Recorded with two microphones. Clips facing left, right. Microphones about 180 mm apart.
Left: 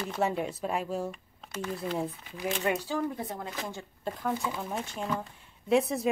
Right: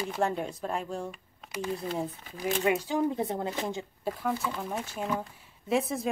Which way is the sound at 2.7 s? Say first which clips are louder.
Right 4 dB; 15° right (ahead or behind).